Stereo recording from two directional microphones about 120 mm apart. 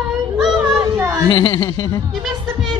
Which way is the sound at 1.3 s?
35° left (ahead or behind).